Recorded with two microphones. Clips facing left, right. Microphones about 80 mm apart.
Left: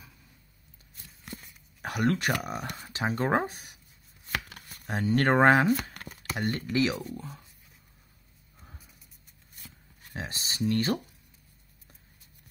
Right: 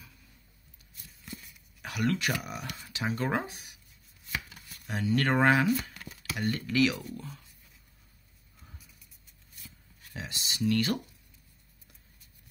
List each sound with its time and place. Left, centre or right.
1.2 s a sound: left
2.4 s speech: left
4.3 s chopping: left
4.6 s speech: left
5.9 s a sound: left
6.6 s speech: left
8.5 s music: left
9.6 s shuffling cards: left